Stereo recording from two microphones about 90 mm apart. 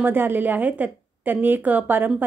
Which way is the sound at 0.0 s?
20° right (ahead or behind).